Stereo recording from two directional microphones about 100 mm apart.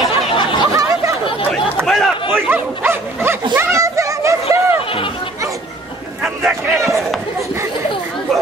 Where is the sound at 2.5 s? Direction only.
20° right (ahead or behind).